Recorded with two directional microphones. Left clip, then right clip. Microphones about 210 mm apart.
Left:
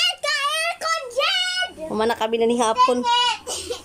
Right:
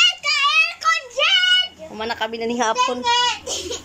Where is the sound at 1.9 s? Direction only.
15° left (ahead or behind).